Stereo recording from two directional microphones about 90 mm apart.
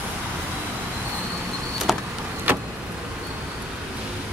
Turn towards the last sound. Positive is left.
turn(degrees=-20)  # may be behind; listen again after turning